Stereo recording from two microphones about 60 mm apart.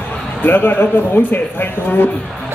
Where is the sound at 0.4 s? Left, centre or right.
Left.